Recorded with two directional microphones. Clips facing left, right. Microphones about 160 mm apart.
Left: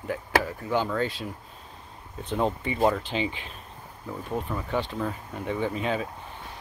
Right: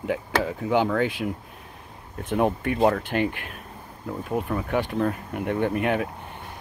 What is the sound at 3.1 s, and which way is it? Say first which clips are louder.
Speech: right 4 dB; 60° right (ahead or behind).